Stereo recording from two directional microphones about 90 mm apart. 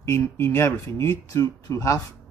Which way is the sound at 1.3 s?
40° left (ahead or behind).